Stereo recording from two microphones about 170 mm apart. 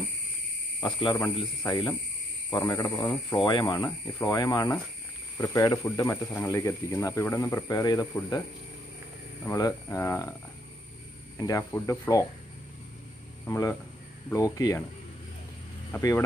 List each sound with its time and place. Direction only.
0.7 s speech: 25° left (ahead or behind)
9.5 s speech: 20° left (ahead or behind)
11.3 s speech: 20° left (ahead or behind)
13.5 s speech: 20° left (ahead or behind)
16.0 s speech: 20° left (ahead or behind)